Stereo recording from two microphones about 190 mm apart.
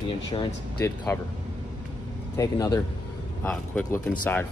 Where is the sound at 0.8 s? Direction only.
15° left (ahead or behind).